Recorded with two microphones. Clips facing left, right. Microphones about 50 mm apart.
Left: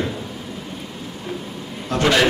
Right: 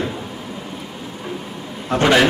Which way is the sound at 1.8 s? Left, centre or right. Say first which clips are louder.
Right 3 dB; right.